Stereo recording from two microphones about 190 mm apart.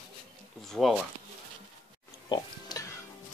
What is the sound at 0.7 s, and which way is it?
Speech, centre (ahead or behind).